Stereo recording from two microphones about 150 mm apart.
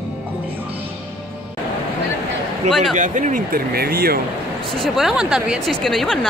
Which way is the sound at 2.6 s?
50° right (ahead or behind).